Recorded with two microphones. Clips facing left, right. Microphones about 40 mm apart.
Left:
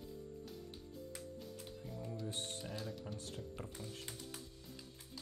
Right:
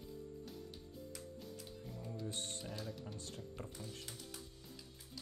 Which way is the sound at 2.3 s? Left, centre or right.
Centre.